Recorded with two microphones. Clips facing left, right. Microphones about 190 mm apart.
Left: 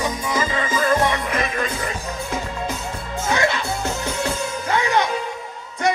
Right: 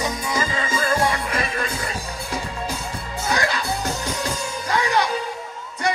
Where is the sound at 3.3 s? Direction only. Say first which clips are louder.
Left 2 dB; 35° right (ahead or behind).